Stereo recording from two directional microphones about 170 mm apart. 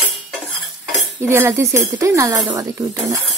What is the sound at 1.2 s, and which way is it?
Cutlery, 15° right (ahead or behind).